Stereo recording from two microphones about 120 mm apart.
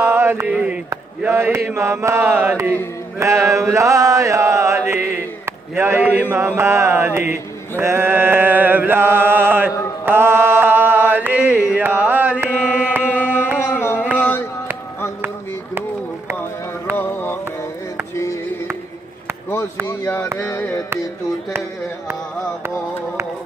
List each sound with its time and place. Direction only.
0.1 s mantra: 20° right (ahead or behind)
13.6 s carnatic music: 20° left (ahead or behind)
14.1 s chop: 15° left (ahead or behind)
16.9 s a sound: 15° left (ahead or behind)
19.9 s a sound: 20° left (ahead or behind)
20.3 s music: 20° left (ahead or behind)